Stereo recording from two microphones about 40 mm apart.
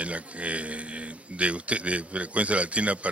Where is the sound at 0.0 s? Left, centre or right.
Right.